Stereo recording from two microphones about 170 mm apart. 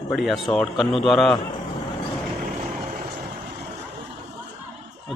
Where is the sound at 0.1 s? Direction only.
Centre (ahead or behind).